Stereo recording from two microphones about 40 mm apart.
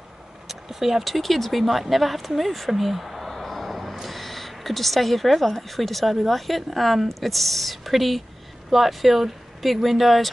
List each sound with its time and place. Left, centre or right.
0.5 s speech: centre